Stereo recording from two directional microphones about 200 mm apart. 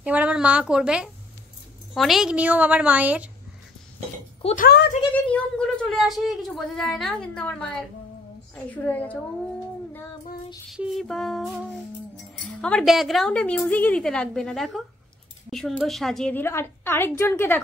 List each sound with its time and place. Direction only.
0.0 s a woman's voice: 5° right (ahead or behind)
4.4 s speech: 30° left (ahead or behind)
5.1 s a woman's voice: 5° left (ahead or behind)
10.7 s a woman's voice: centre (ahead or behind)